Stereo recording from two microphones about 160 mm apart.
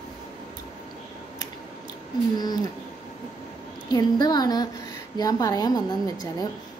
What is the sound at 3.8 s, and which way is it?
A woman's voice, 25° left (ahead or behind).